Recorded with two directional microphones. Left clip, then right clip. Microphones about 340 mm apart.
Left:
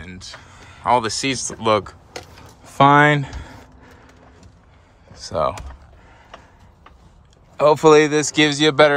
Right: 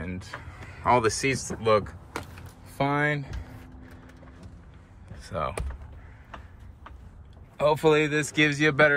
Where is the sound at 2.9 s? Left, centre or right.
Left.